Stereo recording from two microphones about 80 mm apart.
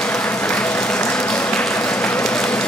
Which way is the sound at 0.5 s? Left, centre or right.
Centre.